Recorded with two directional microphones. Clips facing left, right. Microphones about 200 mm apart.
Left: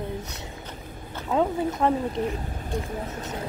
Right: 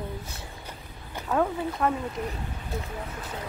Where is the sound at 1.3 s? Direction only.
20° left (ahead or behind); by 3.2 s 40° left (ahead or behind).